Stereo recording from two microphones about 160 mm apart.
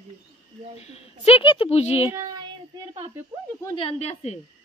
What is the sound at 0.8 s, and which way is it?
A woman's voice, 40° left (ahead or behind).